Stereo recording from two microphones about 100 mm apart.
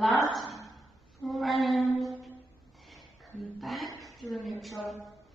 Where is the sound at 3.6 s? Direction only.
Centre (ahead or behind).